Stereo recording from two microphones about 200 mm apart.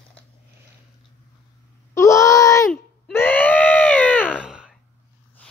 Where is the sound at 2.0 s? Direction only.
15° left (ahead or behind).